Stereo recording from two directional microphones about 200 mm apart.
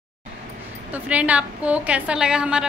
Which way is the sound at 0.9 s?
5° right (ahead or behind).